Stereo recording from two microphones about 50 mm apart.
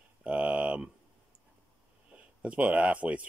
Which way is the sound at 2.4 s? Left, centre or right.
Right.